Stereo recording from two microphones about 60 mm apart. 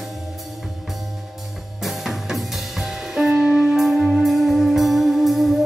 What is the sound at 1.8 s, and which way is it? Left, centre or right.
Music, centre.